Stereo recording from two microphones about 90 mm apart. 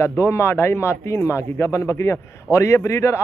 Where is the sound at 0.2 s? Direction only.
30° left (ahead or behind).